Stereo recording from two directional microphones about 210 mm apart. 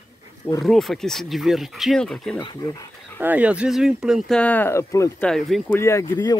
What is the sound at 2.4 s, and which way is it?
Speech, 20° left (ahead or behind).